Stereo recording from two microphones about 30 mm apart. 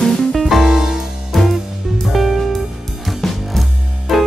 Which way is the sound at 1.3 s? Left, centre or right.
Centre.